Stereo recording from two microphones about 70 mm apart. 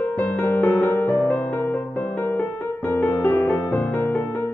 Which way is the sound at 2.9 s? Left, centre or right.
Left.